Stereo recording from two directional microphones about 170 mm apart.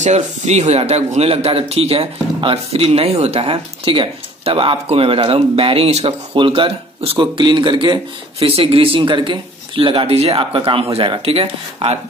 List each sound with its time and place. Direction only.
0.0 s speech: 40° right (ahead or behind)